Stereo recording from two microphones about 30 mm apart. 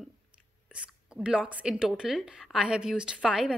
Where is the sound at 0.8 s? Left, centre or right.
Right.